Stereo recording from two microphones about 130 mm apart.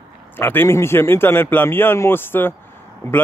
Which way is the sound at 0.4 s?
15° left (ahead or behind).